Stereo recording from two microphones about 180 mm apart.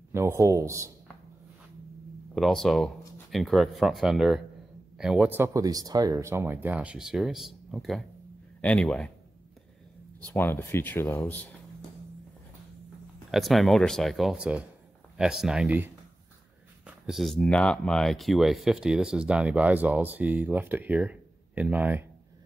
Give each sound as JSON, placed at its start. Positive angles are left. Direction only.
{"t": 0.1, "sound": "speech", "side_deg": -15}
{"t": 2.3, "sound": "speech", "side_deg": 0}
{"t": 10.2, "sound": "speech", "side_deg": 10}
{"t": 13.3, "sound": "speech", "side_deg": 0}